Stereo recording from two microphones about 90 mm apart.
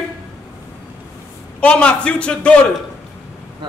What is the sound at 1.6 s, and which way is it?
Speech, 10° left (ahead or behind).